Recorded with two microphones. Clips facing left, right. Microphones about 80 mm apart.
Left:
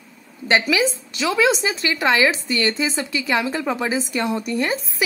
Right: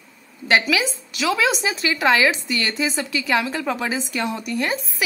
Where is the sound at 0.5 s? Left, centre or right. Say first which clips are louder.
Left 1 dB; centre.